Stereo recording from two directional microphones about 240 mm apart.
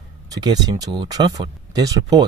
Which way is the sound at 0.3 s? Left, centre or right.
Centre.